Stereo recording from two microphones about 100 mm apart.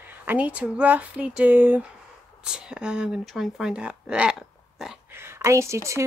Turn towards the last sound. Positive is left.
turn(degrees=-30)  # may be behind; listen again after turning